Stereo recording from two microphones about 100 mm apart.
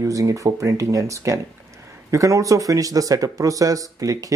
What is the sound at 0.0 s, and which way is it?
Speech, 35° right (ahead or behind).